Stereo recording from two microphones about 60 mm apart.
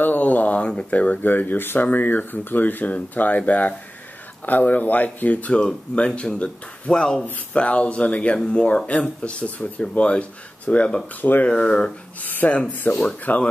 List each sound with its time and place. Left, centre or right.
0.0 s speech: left
11.4 s speech: centre
12.2 s speech: left